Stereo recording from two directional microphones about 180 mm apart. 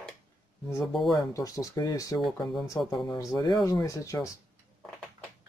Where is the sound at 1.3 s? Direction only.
20° left (ahead or behind).